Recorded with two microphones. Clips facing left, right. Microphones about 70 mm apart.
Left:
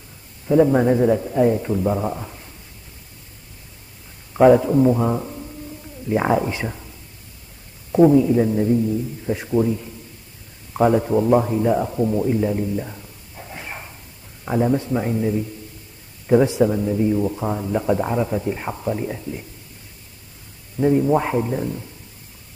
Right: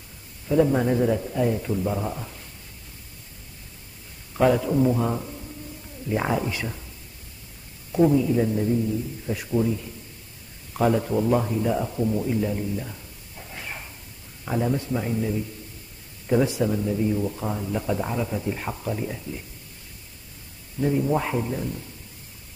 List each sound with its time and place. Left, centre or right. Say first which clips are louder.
0.5 s a man's voice: left 5 dB; left
4.4 s a man's voice: left 7 dB; centre
7.9 s a man's voice: left 6 dB; left
12.3 s a sound: left 5 dB; centre
14.4 s a man's voice: left 6 dB; centre
20.7 s a man's voice: left 6 dB; left